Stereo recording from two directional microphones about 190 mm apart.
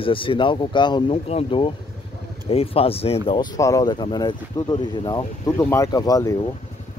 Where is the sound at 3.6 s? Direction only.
20° left (ahead or behind).